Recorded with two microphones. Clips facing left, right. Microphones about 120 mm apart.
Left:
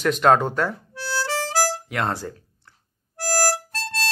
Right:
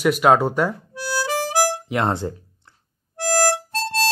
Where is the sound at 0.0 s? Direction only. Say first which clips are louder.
Right 2 dB; 10° right (ahead or behind).